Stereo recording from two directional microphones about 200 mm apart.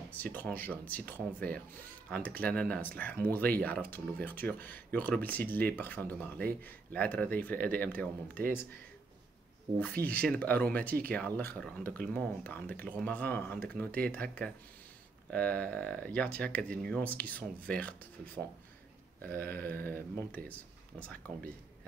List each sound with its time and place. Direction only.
0.1 s speech: 10° left (ahead or behind)
9.7 s speech: 20° right (ahead or behind)
10.0 s speech: 5° left (ahead or behind)